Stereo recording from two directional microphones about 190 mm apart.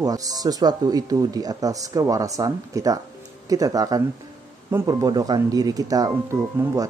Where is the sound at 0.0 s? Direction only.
20° right (ahead or behind).